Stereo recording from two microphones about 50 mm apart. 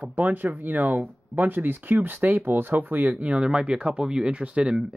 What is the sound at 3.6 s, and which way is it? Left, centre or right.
Speech, right.